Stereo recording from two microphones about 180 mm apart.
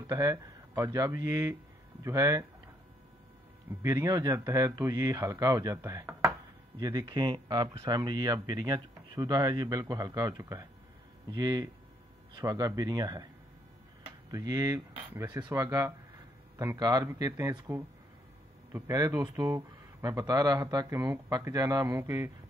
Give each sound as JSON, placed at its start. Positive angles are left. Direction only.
{"t": 0.0, "sound": "speech", "side_deg": -20}
{"t": 3.8, "sound": "speech", "side_deg": -20}
{"t": 14.3, "sound": "speech", "side_deg": -20}